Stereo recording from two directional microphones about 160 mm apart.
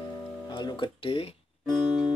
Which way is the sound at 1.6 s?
5° right (ahead or behind).